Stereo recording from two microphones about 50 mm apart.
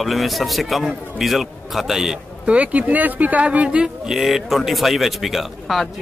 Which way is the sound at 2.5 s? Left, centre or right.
Right.